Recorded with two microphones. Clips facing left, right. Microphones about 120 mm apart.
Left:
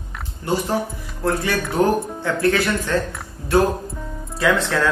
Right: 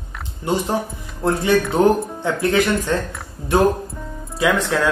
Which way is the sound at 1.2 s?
25° right (ahead or behind).